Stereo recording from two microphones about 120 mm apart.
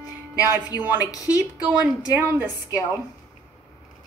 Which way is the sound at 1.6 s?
10° right (ahead or behind).